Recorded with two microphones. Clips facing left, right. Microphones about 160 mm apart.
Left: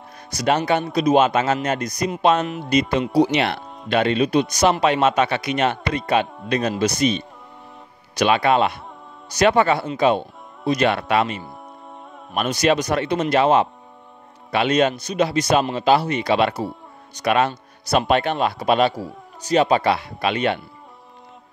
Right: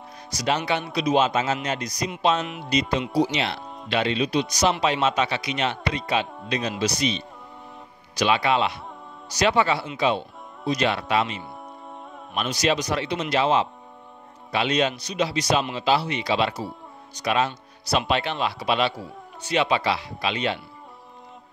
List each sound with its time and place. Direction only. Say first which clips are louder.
0.3 s a man's voice: left 5 dB; 55° left (ahead or behind)
3.6 s music: left 2 dB; centre (ahead or behind)
3.9 s a man's voice: left 5 dB; 50° left (ahead or behind)
11.4 s music: even; centre (ahead or behind)
12.4 s a man's voice: left 5 dB; 55° left (ahead or behind)